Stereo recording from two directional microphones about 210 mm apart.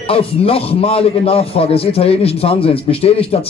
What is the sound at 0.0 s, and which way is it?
A man's voice, 25° left (ahead or behind).